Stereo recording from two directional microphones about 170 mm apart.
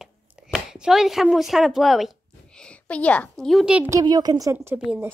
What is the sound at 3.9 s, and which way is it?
Speech, 25° right (ahead or behind).